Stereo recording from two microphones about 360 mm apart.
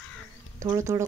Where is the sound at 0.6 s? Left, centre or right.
Centre.